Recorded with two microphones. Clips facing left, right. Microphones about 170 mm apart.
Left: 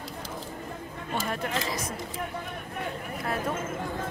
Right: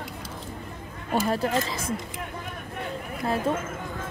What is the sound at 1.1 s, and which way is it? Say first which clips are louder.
Speech: right 7 dB; 35° right (ahead or behind).